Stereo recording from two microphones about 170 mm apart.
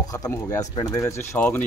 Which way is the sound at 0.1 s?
20° left (ahead or behind).